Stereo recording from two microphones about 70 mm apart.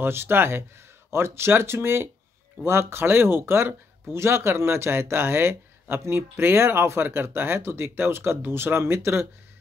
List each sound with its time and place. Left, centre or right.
0.0 s speech: right